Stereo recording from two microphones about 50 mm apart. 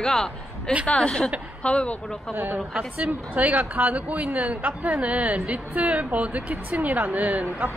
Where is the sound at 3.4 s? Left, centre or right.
Right.